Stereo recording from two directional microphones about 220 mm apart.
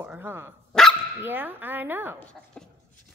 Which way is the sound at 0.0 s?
10° right (ahead or behind).